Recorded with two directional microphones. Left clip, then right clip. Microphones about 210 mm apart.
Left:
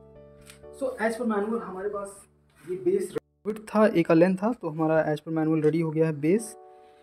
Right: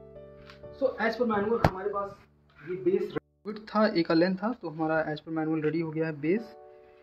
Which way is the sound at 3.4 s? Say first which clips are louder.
Left 4 dB; 50° left (ahead or behind).